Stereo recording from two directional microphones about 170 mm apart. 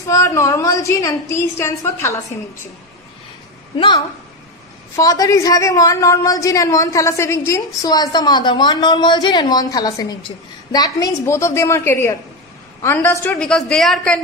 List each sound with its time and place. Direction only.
0.0 s a woman's voice: 20° left (ahead or behind)
3.7 s a woman's voice: 25° left (ahead or behind); by 14.2 s 5° left (ahead or behind)